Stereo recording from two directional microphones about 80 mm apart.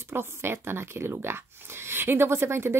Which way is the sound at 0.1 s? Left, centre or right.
Right.